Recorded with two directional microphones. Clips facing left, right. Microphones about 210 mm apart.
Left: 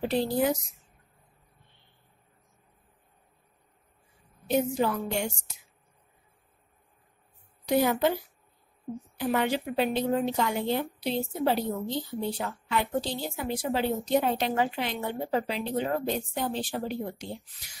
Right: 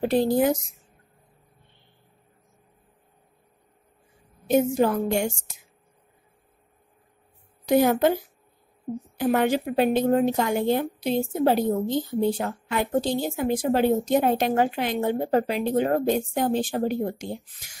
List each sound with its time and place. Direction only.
0.0 s a woman's voice: 50° right (ahead or behind)
4.5 s a woman's voice: 45° right (ahead or behind)
7.6 s a woman's voice: 50° right (ahead or behind)
8.9 s a woman's voice: 30° right (ahead or behind)
9.2 s a woman's voice: 45° right (ahead or behind)